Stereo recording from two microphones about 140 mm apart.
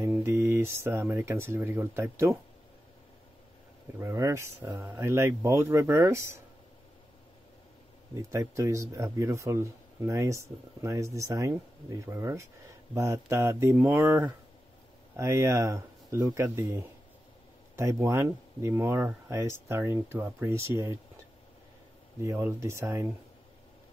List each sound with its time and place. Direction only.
0.0 s speech: 20° right (ahead or behind)
4.0 s speech: 20° right (ahead or behind)
8.2 s speech: 20° right (ahead or behind)
22.2 s speech: 20° right (ahead or behind)